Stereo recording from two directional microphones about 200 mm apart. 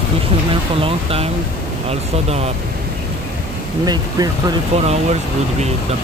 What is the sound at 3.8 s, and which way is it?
Speech, 20° right (ahead or behind).